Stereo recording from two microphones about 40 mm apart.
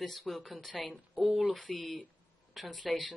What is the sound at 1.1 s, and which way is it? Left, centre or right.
Speech, right.